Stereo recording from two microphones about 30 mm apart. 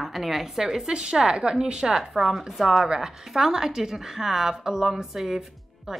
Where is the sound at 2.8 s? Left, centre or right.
Centre.